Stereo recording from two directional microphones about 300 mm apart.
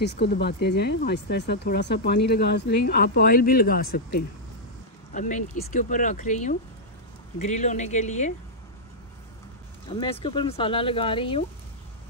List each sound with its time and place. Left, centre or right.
0.0 s speech: left
9.8 s speech: centre